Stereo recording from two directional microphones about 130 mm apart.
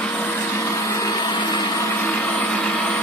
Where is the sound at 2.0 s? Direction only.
15° left (ahead or behind).